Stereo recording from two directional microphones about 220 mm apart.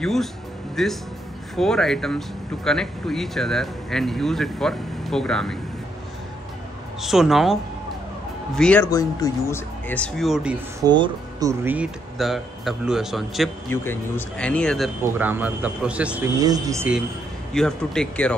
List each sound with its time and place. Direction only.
0.0 s speech: centre (ahead or behind)
7.0 s speech: centre (ahead or behind)
8.5 s speech: 5° left (ahead or behind)
10.8 s speech: 20° right (ahead or behind); by 13.5 s centre (ahead or behind)
13.7 s speech: 10° left (ahead or behind)
15.1 s a man's voice: 10° right (ahead or behind)
16.3 s a man's voice: 15° right (ahead or behind)
17.5 s speech: 5° left (ahead or behind)